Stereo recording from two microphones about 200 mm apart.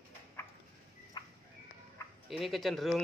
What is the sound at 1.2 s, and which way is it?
Fowl, 20° left (ahead or behind).